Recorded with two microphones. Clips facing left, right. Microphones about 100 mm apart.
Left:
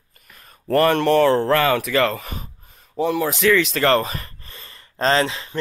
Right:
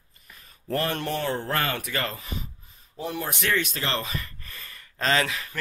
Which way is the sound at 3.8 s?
45° left (ahead or behind).